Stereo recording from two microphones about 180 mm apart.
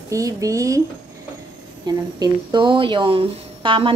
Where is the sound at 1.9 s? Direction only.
20° right (ahead or behind).